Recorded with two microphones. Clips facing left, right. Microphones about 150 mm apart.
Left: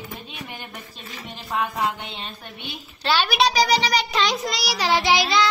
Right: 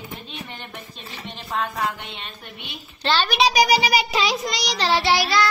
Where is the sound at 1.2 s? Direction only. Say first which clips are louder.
Left 1 dB; 5° left (ahead or behind).